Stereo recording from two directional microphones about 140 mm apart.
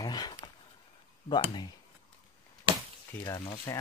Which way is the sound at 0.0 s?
30° left (ahead or behind).